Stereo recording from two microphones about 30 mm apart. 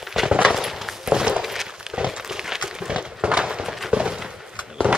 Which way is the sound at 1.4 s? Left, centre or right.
Centre.